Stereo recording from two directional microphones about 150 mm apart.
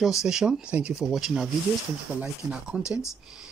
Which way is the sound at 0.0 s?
5° right (ahead or behind).